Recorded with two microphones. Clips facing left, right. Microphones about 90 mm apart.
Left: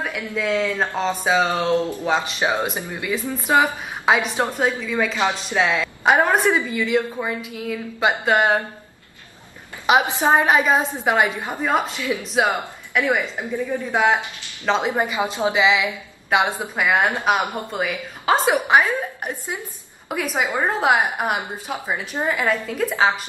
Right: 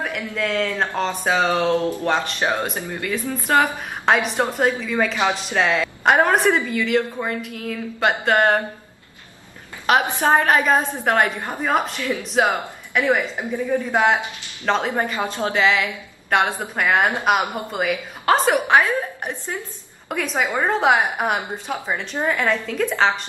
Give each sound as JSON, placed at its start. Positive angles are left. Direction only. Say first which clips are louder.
{"t": 0.0, "sound": "a woman's voice", "louder": "even", "side_deg": 5}
{"t": 2.4, "sound": "a woman's voice", "louder": "left 1 dB", "side_deg": 15}
{"t": 9.8, "sound": "a woman's voice", "louder": "left 1 dB", "side_deg": 10}